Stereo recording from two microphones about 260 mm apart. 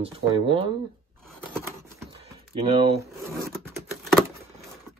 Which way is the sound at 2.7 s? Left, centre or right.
Right.